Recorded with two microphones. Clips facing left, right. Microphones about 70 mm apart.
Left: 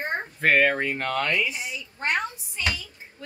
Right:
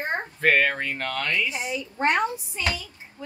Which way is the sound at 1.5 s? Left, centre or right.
Right.